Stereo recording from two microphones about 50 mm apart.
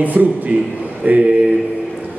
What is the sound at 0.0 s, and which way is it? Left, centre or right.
A man's voice, right.